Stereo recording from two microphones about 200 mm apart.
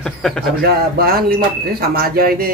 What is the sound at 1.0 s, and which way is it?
Speech, 50° right (ahead or behind).